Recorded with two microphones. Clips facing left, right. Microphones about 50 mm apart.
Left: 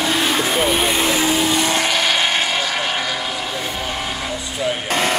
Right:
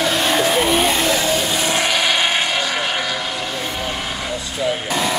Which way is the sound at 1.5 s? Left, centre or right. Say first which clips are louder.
Left 1 dB; centre.